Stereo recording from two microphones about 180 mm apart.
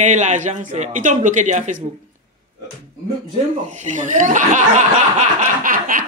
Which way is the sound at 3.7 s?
40° right (ahead or behind).